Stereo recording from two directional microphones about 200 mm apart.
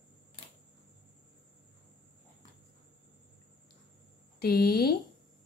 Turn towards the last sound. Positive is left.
turn(degrees=50)  # may be behind; listen again after turning